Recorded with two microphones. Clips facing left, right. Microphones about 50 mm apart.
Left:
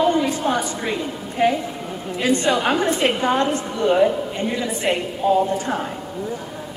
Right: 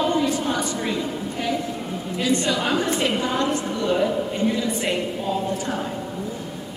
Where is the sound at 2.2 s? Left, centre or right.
Left.